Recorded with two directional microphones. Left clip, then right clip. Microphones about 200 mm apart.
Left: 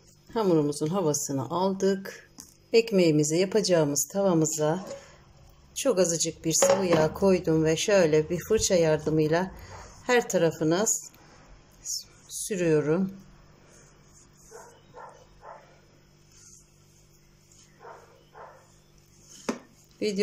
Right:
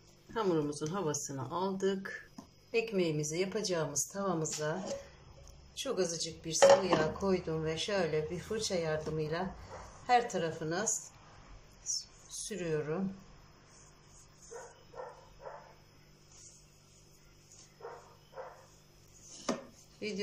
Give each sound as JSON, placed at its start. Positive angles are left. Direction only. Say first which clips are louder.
{"t": 0.3, "sound": "speech", "louder": "left 8 dB", "side_deg": 25}
{"t": 2.7, "sound": "a woman's voice", "louder": "left 11 dB", "side_deg": 40}
{"t": 5.8, "sound": "a woman's voice", "louder": "left 10 dB", "side_deg": 40}
{"t": 11.8, "sound": "a sound", "louder": "left 3 dB", "side_deg": 45}